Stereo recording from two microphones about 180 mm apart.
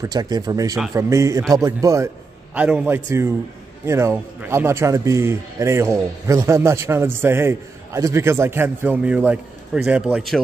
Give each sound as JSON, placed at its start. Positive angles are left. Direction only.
{"t": 0.0, "sound": "a man's voice", "side_deg": -20}
{"t": 2.5, "sound": "a man's voice", "side_deg": -5}